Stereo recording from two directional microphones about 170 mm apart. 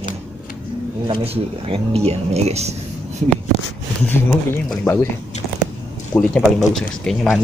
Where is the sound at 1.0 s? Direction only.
30° right (ahead or behind).